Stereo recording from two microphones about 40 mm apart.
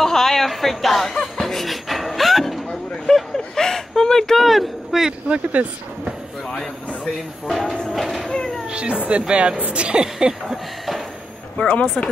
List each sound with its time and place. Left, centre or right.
0.0 s chuckle: centre
1.4 s pant: centre
3.3 s a sound: centre
4.9 s a sound: centre
5.3 s speech: right
7.4 s speech: centre
8.6 s a woman's voice: right
10.1 s a sound: centre
11.5 s speech: left